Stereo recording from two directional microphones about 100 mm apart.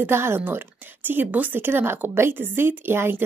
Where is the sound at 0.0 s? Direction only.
25° right (ahead or behind).